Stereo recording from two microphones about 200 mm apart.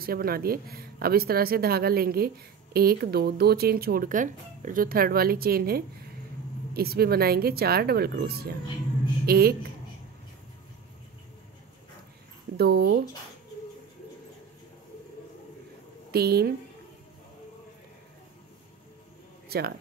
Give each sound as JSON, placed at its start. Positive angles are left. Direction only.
{"t": 0.0, "sound": "a woman's voice", "side_deg": -50}
{"t": 12.5, "sound": "a woman's voice", "side_deg": -55}
{"t": 16.1, "sound": "a woman's voice", "side_deg": -50}